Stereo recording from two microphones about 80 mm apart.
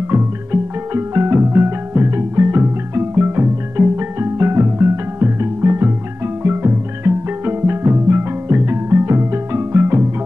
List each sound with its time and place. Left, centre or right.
0.1 s music: right